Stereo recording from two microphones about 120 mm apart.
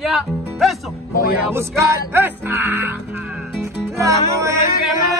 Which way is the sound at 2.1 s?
20° right (ahead or behind).